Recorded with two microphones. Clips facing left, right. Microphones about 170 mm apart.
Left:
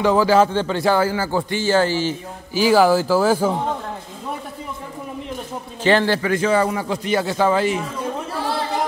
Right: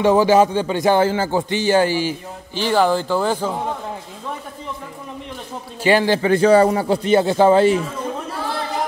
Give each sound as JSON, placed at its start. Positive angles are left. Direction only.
{"t": 0.0, "sound": "a man's voice", "side_deg": -20}
{"t": 2.5, "sound": "speech", "side_deg": 5}
{"t": 5.9, "sound": "a man's voice", "side_deg": -15}
{"t": 6.2, "sound": "speech", "side_deg": -35}